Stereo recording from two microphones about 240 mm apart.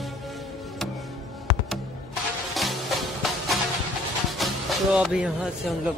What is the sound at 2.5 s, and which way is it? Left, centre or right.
Music, centre.